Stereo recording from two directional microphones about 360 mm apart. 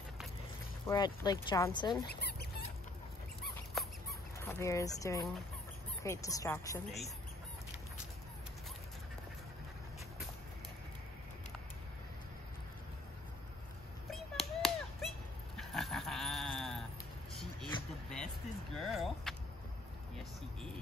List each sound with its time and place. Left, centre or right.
0.8 s speech: centre
2.0 s dog: left
3.7 s rodents: centre
6.0 s speech: centre
14.1 s a sound: centre
18.8 s vehicle: centre